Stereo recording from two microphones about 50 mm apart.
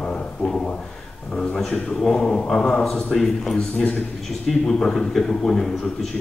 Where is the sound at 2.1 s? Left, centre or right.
Centre.